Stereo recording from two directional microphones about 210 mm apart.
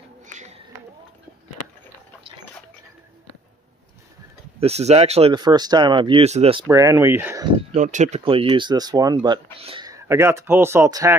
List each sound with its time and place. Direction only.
0.3 s a sound: 35° right (ahead or behind)
4.6 s speech: 30° right (ahead or behind)
6.7 s speech: 15° right (ahead or behind)
7.7 s speech: 35° right (ahead or behind); by 11.1 s 15° right (ahead or behind)